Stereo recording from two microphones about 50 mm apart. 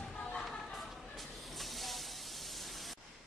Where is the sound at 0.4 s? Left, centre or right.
Centre.